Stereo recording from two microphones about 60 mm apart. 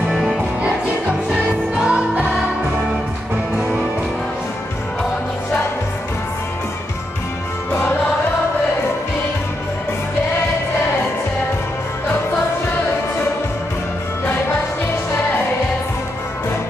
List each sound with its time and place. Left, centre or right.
1.9 s music: centre
3.5 s music: centre